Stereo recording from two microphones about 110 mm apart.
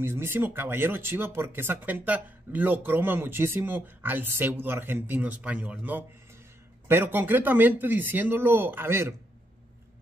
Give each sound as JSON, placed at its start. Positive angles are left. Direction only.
{"t": 0.0, "sound": "speech", "side_deg": -20}